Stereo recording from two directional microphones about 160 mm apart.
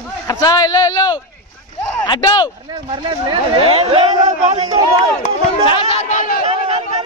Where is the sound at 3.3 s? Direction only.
35° right (ahead or behind).